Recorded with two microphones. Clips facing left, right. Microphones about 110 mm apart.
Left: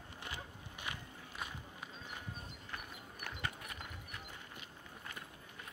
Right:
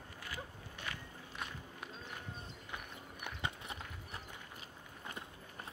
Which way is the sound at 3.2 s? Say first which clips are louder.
Right 1 dB; 25° right (ahead or behind).